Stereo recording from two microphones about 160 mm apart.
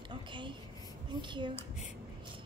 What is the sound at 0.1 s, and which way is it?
A woman's voice, 30° right (ahead or behind).